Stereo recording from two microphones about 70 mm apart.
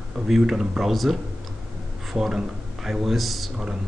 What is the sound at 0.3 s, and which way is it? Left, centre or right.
Speech, centre.